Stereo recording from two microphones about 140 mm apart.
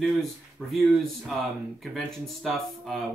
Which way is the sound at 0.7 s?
Centre (ahead or behind).